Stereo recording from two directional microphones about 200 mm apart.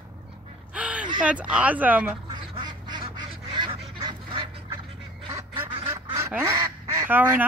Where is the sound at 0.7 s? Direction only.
5° right (ahead or behind).